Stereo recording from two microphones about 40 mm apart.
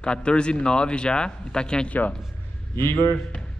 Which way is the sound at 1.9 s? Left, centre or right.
Left.